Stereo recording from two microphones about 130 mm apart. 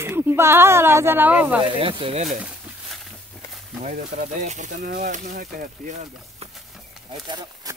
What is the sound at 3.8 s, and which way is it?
Speech, 85° right.